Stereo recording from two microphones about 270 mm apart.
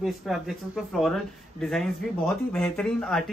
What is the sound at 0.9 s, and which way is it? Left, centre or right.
A man's voice, centre.